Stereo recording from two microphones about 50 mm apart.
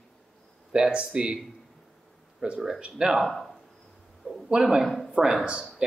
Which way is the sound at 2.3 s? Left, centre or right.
Right.